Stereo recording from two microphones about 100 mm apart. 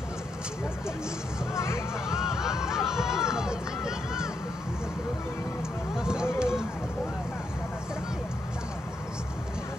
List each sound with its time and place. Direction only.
1.5 s hubbub: 30° left (ahead or behind)
2.0 s run: 5° right (ahead or behind)
5.9 s run: 5° right (ahead or behind)